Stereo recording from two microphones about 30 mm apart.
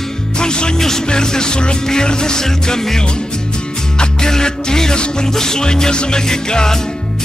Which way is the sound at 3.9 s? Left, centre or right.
Left.